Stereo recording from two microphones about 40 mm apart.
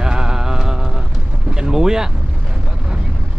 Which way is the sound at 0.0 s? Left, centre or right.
Centre.